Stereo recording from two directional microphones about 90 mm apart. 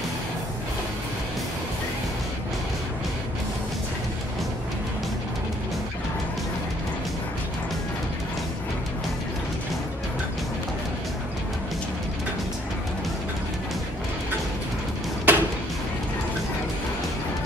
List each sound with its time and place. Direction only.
15.3 s music: 20° right (ahead or behind)